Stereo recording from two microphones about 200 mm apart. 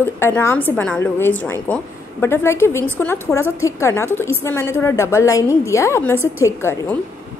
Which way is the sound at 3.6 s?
15° left (ahead or behind).